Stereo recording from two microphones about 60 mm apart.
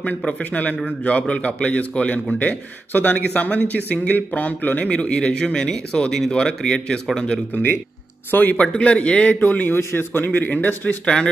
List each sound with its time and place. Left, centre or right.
0.4 s a man's voice: left
4.8 s speech: centre
8.3 s a man's voice: left